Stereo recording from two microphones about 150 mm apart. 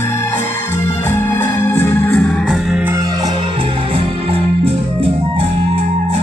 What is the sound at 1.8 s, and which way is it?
Music, 15° left (ahead or behind).